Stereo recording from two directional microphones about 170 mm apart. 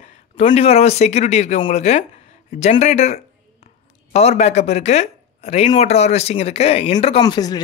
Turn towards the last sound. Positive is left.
turn(degrees=25)  # may be behind; listen again after turning